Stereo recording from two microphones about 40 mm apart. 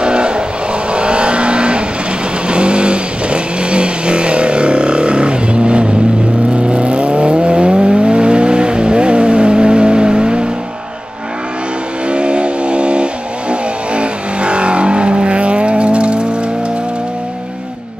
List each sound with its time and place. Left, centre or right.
0.0 s vehicle: right
12.1 s vehicle: right